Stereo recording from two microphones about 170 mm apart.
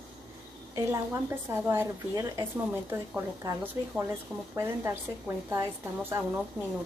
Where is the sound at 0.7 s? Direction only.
15° right (ahead or behind).